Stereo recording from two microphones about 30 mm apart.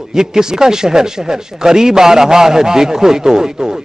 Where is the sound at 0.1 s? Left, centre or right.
Right.